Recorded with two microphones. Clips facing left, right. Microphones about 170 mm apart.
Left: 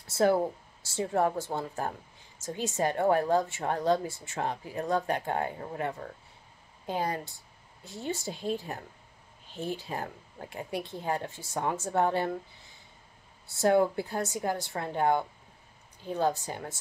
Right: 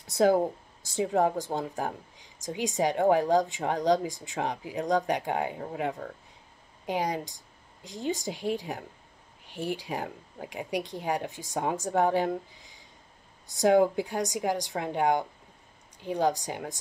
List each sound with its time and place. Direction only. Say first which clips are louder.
0.0 s speech: right 2 dB; 15° right (ahead or behind)
6.9 s speech: right 2 dB; 15° right (ahead or behind)